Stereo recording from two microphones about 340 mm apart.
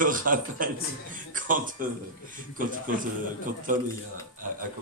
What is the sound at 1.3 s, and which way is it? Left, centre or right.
Speech, right.